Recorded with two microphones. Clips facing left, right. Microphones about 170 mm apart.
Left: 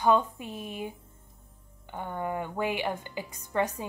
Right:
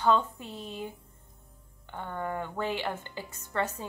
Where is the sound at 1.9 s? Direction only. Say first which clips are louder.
Left 2 dB; 15° left (ahead or behind).